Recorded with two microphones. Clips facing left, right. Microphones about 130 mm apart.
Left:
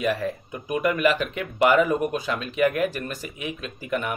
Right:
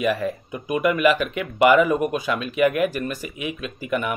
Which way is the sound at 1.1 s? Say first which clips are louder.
Right 2 dB; 5° right (ahead or behind).